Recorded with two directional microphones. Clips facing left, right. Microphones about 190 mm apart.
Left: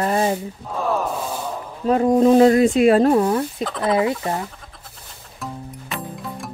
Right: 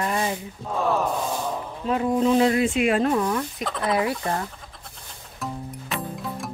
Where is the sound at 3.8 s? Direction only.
25° left (ahead or behind).